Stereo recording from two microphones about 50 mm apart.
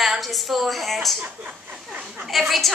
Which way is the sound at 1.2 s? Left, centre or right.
Right.